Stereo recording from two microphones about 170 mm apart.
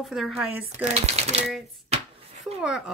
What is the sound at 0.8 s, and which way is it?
Speech, 40° right (ahead or behind).